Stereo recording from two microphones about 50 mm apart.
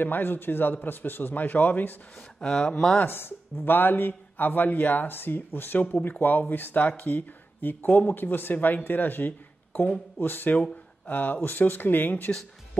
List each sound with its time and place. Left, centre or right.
0.0 s a man's voice: left
2.1 s speech: centre
3.1 s a man's voice: left